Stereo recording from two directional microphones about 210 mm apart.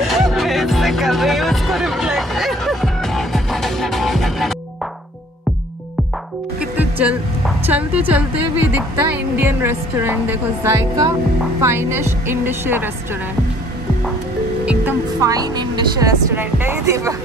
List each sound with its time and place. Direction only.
0.0 s music: centre (ahead or behind)
6.6 s a woman's voice: 5° right (ahead or behind)
14.7 s music: 15° right (ahead or behind)
16.3 s a woman's voice: 10° right (ahead or behind)